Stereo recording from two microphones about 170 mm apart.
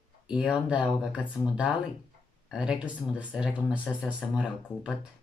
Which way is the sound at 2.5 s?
5° right (ahead or behind).